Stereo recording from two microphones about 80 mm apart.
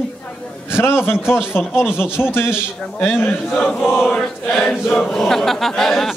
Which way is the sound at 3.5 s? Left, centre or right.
Centre.